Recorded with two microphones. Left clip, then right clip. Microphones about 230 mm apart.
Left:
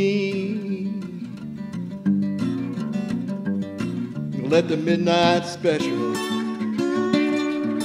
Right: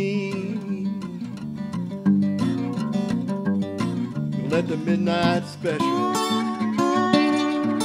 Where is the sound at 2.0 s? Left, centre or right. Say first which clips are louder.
Right 2 dB; centre.